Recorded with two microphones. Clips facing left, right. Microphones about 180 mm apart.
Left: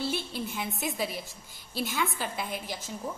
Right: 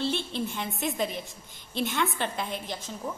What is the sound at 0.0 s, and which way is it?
A woman's voice, 10° left (ahead or behind).